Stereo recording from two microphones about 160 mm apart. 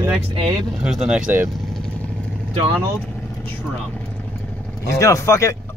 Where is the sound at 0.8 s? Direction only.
5° right (ahead or behind).